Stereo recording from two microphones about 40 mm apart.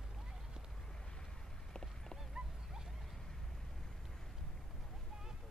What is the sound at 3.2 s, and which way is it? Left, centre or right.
Vehicle, centre.